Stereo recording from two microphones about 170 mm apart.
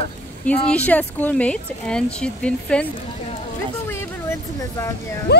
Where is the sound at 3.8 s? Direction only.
15° left (ahead or behind).